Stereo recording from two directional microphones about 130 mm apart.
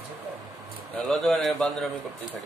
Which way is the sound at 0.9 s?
Centre (ahead or behind).